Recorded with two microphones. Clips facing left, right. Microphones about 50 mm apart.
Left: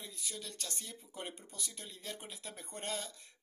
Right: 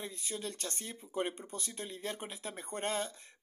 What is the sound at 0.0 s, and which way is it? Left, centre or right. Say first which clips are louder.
Speech: right 6 dB; right.